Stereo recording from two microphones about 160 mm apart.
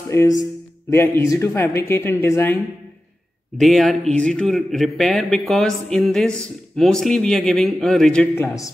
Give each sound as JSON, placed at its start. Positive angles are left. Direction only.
{"t": 0.1, "sound": "speech", "side_deg": 15}
{"t": 3.5, "sound": "speech", "side_deg": 0}